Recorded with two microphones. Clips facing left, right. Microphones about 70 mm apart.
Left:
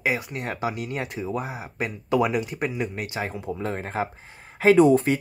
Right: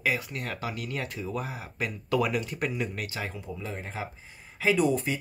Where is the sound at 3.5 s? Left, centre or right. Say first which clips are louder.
Left 11 dB; left.